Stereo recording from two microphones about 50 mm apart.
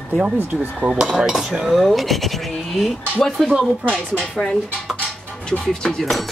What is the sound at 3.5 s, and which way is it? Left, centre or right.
Speech, right.